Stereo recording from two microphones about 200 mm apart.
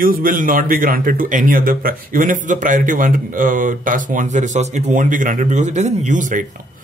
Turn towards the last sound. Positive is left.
turn(degrees=-40)  # may be behind; listen again after turning